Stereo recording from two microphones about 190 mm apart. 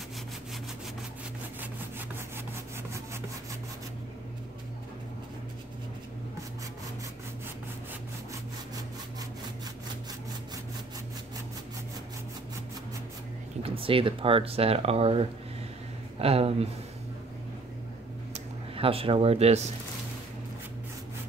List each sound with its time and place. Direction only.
1.6 s wood: 10° right (ahead or behind)
13.6 s speech: 30° right (ahead or behind)
18.3 s a sound: 30° right (ahead or behind)